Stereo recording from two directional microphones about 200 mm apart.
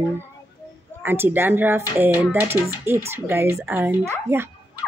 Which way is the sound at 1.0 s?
10° right (ahead or behind).